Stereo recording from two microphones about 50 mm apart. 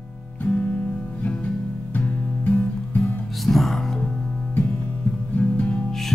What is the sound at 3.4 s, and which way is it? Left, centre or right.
Music, centre.